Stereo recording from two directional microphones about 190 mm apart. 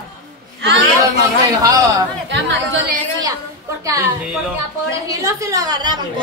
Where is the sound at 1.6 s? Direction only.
20° right (ahead or behind).